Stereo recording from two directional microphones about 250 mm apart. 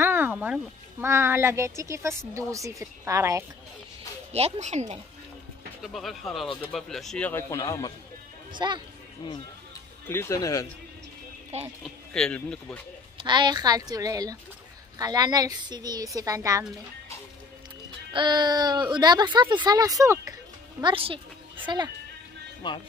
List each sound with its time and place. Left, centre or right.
0.0 s music: centre
1.0 s speech: centre
4.3 s speech: right
5.8 s speech: centre
8.5 s speech: centre
10.0 s speech: centre
11.6 s speech: centre
13.2 s speech: centre
18.1 s speech: centre
22.6 s speech: centre